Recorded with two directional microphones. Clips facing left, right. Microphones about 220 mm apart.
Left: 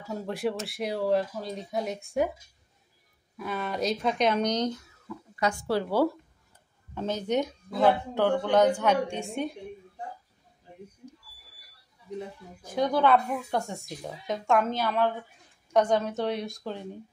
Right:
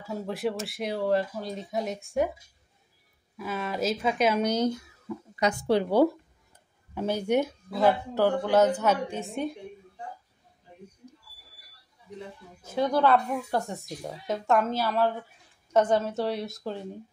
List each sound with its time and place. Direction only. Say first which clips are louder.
0.1 s speech: even; centre (ahead or behind)
3.3 s speech: even; centre (ahead or behind)
5.0 s speech: right 2 dB; 20° right (ahead or behind); by 9.5 s centre (ahead or behind)
12.7 s speech: even; centre (ahead or behind)